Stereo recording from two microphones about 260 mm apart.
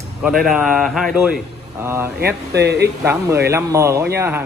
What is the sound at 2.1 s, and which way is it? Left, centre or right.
Speech, right.